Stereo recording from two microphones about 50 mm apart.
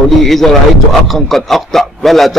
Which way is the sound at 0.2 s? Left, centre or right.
Centre.